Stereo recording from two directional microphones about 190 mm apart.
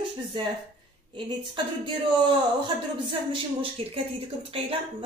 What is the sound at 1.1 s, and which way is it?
Speech, 25° right (ahead or behind).